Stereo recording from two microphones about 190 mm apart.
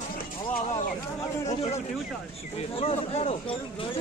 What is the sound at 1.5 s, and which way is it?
Speech, 35° left (ahead or behind).